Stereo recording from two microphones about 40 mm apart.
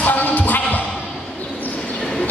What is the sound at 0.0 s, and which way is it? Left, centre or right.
Music, left.